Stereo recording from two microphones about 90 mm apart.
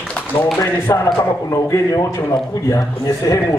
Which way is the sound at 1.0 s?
40° left (ahead or behind).